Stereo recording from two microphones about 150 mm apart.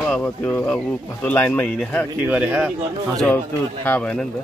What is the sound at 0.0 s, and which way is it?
Speech, 10° left (ahead or behind).